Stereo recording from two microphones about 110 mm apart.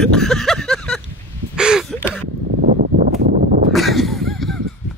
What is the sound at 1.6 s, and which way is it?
Gasp, 5° right (ahead or behind).